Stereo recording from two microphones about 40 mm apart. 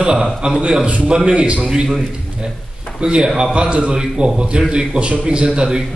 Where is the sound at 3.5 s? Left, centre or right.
Right.